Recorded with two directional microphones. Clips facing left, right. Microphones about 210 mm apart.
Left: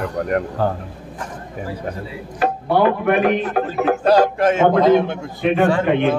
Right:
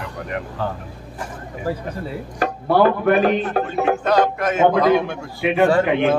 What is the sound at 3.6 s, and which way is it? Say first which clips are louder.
A man's voice: left 3 dB; 35° left (ahead or behind).